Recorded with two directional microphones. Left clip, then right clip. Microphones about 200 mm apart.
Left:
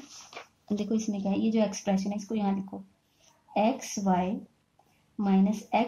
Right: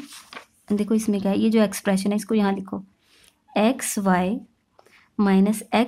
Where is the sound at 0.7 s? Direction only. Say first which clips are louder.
Right 8 dB; 35° right (ahead or behind).